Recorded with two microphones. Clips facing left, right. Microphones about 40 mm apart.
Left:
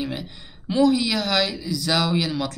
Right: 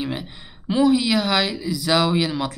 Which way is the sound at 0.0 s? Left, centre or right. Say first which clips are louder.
Right 1 dB; centre.